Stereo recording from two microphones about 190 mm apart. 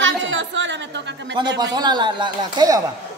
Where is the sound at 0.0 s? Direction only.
80° right.